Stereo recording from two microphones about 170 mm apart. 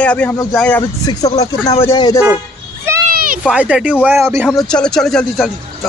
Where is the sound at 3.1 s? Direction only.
55° right (ahead or behind).